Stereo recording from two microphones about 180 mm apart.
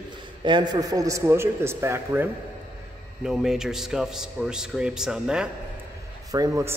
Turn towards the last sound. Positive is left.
turn(degrees=-15)  # may be behind; listen again after turning